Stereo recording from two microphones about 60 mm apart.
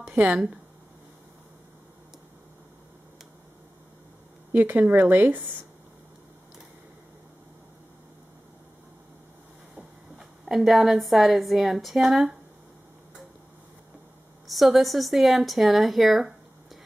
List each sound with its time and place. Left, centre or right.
0.0 s a sound: right
4.6 s speech: right
9.8 s a woman's voice: centre
14.5 s speech: centre